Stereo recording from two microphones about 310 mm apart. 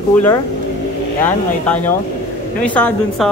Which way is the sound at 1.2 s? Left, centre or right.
Centre.